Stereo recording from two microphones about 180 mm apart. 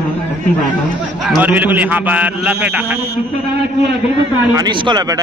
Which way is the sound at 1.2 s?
10° right (ahead or behind).